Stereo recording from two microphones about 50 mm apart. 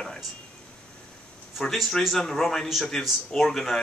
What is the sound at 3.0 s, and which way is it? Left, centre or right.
Speech, centre.